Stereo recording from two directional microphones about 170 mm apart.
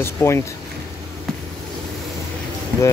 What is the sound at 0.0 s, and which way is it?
Speech, 15° left (ahead or behind).